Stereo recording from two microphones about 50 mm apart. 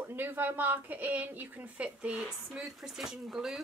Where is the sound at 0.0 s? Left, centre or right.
Right.